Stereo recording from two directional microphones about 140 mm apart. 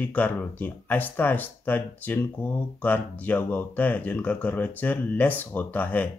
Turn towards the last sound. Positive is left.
turn(degrees=10)  # may be behind; listen again after turning